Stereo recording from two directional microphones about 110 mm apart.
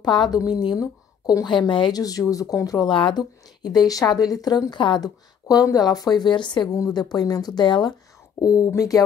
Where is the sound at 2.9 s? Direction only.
50° left (ahead or behind).